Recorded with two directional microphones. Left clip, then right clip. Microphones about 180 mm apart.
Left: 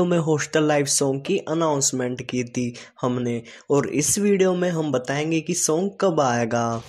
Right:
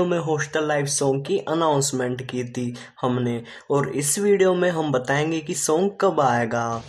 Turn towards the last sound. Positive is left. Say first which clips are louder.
# right 1 dB
turn(degrees=30)  # may be behind; listen again after turning